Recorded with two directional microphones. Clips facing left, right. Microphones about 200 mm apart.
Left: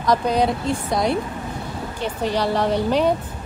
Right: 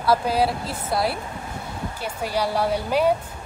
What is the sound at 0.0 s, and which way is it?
A woman's voice, 5° right (ahead or behind).